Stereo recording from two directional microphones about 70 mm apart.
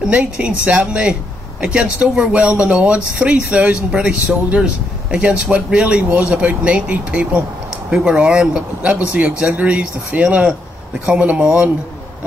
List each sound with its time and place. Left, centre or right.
0.0 s speech: centre